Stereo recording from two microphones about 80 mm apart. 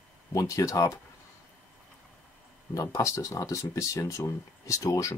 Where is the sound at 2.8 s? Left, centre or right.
Left.